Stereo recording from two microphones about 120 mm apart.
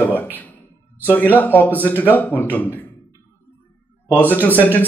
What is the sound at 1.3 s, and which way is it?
Speech, 15° left (ahead or behind).